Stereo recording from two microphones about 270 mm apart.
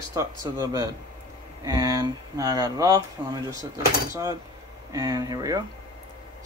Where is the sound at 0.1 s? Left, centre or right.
Centre.